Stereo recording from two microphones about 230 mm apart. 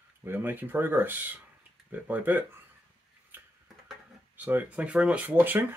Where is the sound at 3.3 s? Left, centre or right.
Centre.